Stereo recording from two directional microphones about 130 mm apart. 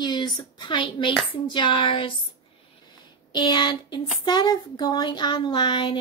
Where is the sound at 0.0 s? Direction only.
35° left (ahead or behind).